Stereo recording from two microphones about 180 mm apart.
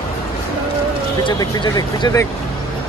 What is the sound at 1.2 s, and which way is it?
Speech, 25° left (ahead or behind).